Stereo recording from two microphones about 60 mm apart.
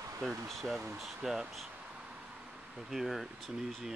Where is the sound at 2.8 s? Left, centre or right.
Centre.